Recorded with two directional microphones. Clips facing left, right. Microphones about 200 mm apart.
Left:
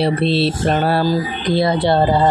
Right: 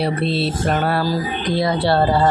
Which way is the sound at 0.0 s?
30° left (ahead or behind).